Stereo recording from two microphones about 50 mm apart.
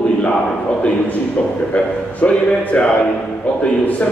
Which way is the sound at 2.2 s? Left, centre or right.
Left.